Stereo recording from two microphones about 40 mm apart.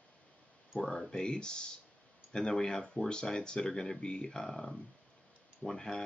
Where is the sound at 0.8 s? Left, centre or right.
Left.